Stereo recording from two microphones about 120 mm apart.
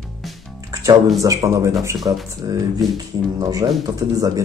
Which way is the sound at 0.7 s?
25° right (ahead or behind).